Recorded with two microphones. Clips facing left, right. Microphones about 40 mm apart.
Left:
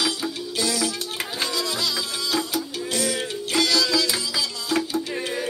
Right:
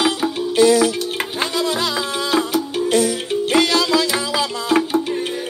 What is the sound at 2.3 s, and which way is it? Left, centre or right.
Music, right.